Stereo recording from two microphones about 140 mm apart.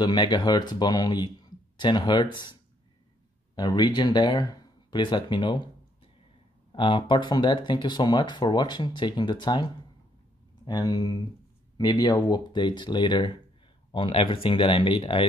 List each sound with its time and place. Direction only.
0.0 s speech: 30° left (ahead or behind)
3.5 s speech: 30° left (ahead or behind)
6.7 s speech: 35° left (ahead or behind)